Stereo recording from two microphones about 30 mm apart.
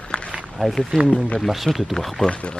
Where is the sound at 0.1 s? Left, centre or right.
Left.